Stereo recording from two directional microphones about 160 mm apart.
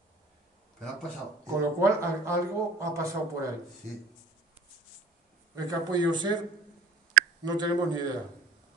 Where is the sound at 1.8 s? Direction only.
15° right (ahead or behind).